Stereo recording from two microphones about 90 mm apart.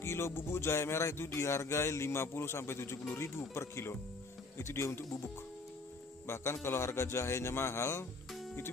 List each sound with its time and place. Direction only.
0.0 s speech: 30° left (ahead or behind)